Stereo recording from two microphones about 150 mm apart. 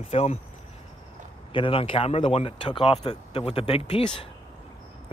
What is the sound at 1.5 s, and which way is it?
Speech, 35° left (ahead or behind).